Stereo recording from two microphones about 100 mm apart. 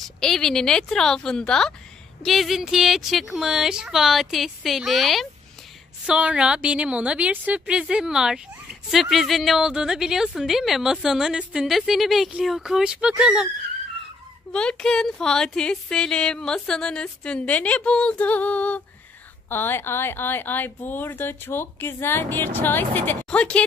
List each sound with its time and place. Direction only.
0.0 s a woman's voice: 5° left (ahead or behind)
6.0 s a woman's voice: 10° right (ahead or behind)
14.5 s speech: 10° left (ahead or behind)